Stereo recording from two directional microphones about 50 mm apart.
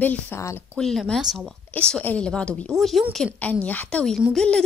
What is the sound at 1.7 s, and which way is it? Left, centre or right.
Speech, left.